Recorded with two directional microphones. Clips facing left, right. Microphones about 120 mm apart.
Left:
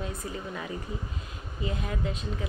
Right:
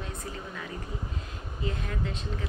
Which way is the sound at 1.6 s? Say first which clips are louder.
Left 2 dB; 10° left (ahead or behind).